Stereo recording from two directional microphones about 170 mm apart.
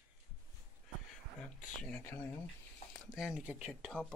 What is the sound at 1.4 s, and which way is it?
Speech, 5° left (ahead or behind).